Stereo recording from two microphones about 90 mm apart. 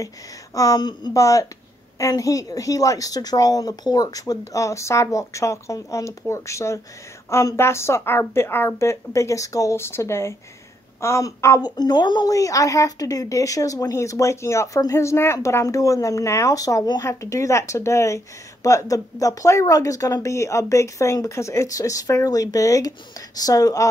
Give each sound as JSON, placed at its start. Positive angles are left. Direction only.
{"t": 0.6, "sound": "a woman's voice", "side_deg": 45}
{"t": 1.1, "sound": "speech", "side_deg": 35}
{"t": 11.6, "sound": "a woman's voice", "side_deg": 50}
{"t": 12.3, "sound": "speech", "side_deg": 40}